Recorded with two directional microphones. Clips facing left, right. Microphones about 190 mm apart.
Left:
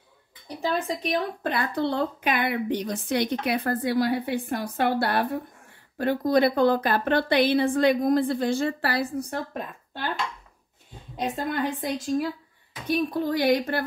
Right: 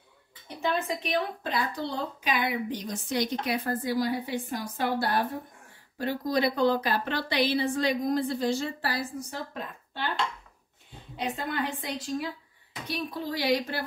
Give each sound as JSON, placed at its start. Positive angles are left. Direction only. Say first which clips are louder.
{"t": 1.0, "sound": "a woman's voice", "louder": "left 3 dB", "side_deg": 55}
{"t": 5.9, "sound": "a woman's voice", "louder": "left 6 dB", "side_deg": 55}
{"t": 11.1, "sound": "a woman's voice", "louder": "left 4 dB", "side_deg": 40}